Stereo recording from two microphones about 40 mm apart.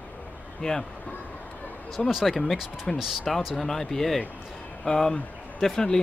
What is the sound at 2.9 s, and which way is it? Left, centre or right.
Speech, centre.